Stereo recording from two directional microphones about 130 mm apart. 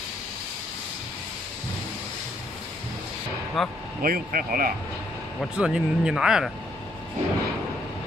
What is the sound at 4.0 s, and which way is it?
Speech, 90° right.